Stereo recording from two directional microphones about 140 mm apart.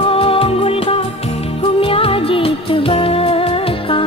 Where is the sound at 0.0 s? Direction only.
40° left (ahead or behind).